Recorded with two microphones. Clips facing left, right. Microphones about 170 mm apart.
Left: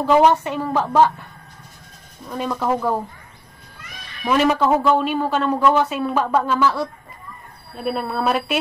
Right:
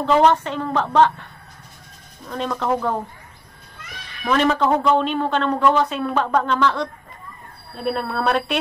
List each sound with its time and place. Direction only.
0.0 s speech: 10° left (ahead or behind)
2.2 s speech: 5° left (ahead or behind)
4.2 s a woman's voice: 15° left (ahead or behind)